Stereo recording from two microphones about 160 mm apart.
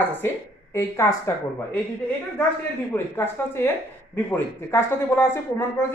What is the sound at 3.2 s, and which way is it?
A woman's voice, 15° left (ahead or behind).